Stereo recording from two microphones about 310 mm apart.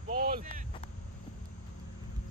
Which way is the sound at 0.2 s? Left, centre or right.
Right.